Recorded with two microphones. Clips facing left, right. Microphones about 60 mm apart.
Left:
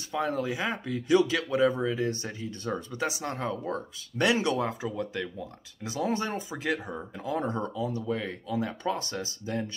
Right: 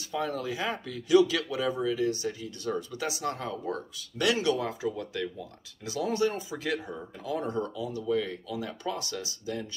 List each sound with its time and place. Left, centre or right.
0.1 s speech: left